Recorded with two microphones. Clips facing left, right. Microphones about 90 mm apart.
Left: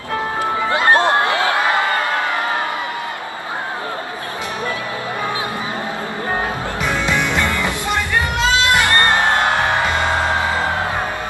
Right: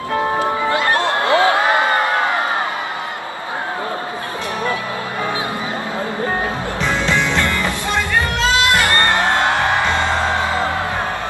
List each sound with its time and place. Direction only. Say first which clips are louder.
0.7 s music: left 6 dB; 20° left (ahead or behind)
1.3 s a sound: right 3 dB; 20° right (ahead or behind)
6.8 s music: right 1 dB; 5° left (ahead or behind)